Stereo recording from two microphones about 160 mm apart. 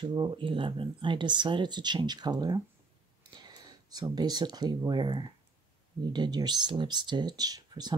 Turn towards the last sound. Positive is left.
turn(degrees=-25)  # may be behind; listen again after turning